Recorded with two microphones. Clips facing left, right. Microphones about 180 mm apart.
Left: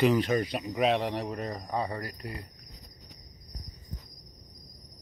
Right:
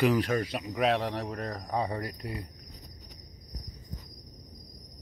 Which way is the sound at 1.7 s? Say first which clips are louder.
Right 2 dB; 15° right (ahead or behind).